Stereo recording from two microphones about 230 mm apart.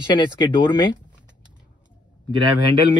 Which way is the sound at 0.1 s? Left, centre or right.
Centre.